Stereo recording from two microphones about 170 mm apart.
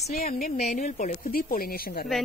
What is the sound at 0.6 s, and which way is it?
Speech, 40° left (ahead or behind).